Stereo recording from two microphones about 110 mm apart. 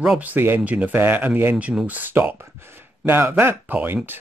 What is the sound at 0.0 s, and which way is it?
Speech, 10° right (ahead or behind).